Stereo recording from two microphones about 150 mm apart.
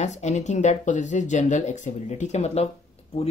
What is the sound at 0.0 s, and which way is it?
Speech, 50° left (ahead or behind).